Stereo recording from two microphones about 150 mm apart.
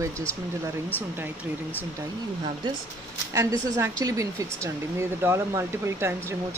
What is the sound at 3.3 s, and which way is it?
A woman's voice, 20° right (ahead or behind).